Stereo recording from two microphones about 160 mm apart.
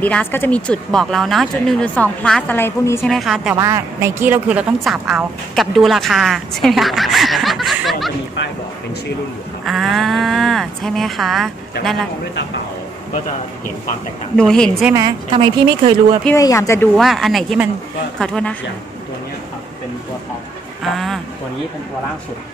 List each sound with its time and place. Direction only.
0.0 s speech: 10° left (ahead or behind)
3.1 s a woman's voice: centre (ahead or behind)
3.5 s a woman's voice: 20° right (ahead or behind); by 8.1 s centre (ahead or behind)
9.7 s a woman's voice: centre (ahead or behind)
14.3 s a woman's voice: 5° left (ahead or behind)
15.3 s speech: 30° right (ahead or behind)
16.3 s speech: 20° left (ahead or behind)
16.9 s a woman's voice: centre (ahead or behind)
20.8 s a woman's voice: centre (ahead or behind)